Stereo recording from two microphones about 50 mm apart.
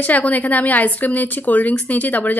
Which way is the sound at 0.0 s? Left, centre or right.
Left.